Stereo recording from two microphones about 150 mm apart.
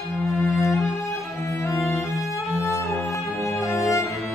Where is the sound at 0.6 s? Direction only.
20° left (ahead or behind).